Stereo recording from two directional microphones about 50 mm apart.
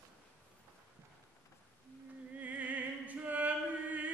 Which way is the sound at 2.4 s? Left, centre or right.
Right.